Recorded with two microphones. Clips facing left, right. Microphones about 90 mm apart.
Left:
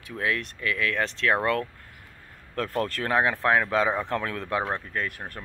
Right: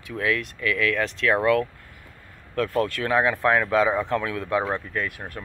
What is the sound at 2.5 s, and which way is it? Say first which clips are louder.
Speech: right 4 dB; 40° left (ahead or behind).